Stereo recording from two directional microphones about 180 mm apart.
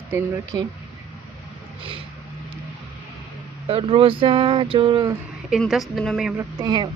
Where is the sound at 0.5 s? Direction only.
20° right (ahead or behind).